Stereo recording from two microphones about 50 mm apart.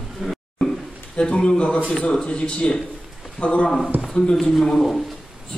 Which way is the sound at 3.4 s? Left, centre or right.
Left.